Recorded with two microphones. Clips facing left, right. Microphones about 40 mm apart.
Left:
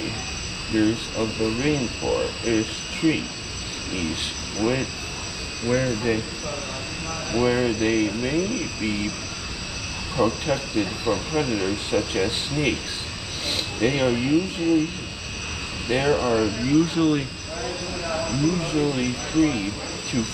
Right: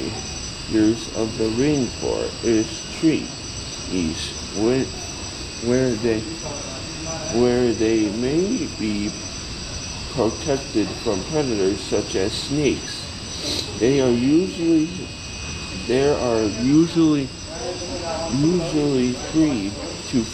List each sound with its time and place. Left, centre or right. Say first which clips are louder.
0.7 s speech: right 3 dB; centre
7.3 s speech: right 4 dB; left
10.1 s speech: right 1 dB; centre
15.9 s speech: right 3 dB; centre
18.7 s speech: right 3 dB; centre
20.1 s speech: right 4 dB; centre